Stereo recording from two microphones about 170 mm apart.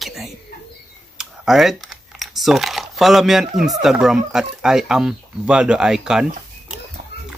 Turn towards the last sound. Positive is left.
turn(degrees=-5)  # may be behind; listen again after turning